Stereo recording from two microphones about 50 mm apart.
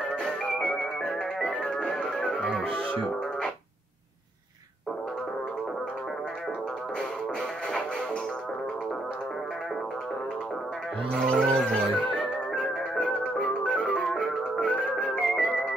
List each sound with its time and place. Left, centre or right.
0.2 s music: centre
11.1 s music: centre